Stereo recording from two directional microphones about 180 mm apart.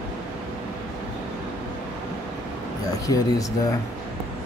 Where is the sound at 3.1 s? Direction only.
20° left (ahead or behind).